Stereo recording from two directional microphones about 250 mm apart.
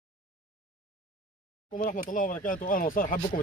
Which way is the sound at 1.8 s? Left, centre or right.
Left.